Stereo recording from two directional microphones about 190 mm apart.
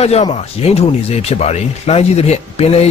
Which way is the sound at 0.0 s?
35° left (ahead or behind).